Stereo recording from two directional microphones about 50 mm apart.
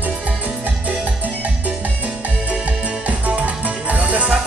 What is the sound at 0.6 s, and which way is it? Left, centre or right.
Music, right.